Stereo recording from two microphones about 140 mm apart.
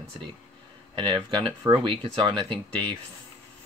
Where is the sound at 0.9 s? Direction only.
35° right (ahead or behind).